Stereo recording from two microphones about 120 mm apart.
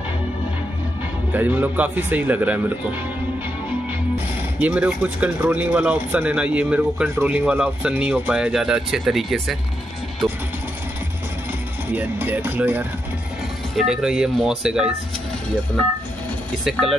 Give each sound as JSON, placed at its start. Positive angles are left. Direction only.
{"t": 1.3, "sound": "speech", "side_deg": -15}
{"t": 4.6, "sound": "speech", "side_deg": -10}
{"t": 11.9, "sound": "speech", "side_deg": -15}
{"t": 13.7, "sound": "speech", "side_deg": -5}
{"t": 16.8, "sound": "speech", "side_deg": 0}